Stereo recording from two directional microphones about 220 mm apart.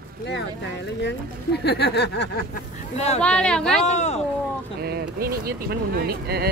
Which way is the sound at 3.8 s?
30° left (ahead or behind).